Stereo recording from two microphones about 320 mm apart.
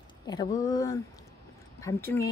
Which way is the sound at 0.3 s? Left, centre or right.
Centre.